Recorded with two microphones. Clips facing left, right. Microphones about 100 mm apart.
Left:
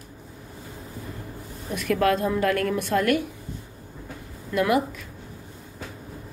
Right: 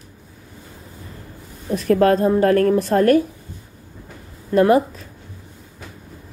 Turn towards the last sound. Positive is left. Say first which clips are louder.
# right 8 dB
turn(degrees=-35)  # may be behind; listen again after turning